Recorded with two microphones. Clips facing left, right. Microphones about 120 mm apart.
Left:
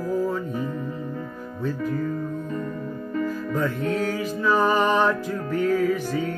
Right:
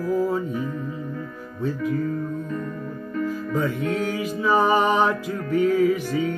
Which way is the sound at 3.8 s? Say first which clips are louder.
Even; 45° left (ahead or behind).